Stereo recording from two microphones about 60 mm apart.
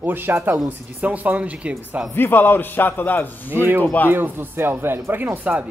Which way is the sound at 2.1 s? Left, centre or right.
Left.